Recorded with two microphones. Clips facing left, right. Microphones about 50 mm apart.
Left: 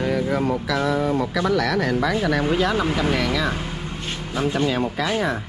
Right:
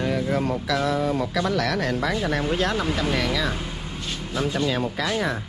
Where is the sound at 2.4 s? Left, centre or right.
Left.